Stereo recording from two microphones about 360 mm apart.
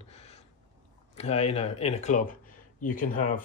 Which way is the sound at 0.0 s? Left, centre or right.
Centre.